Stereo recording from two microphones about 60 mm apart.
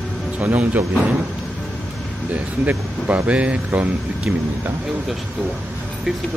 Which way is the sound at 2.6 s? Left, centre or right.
Right.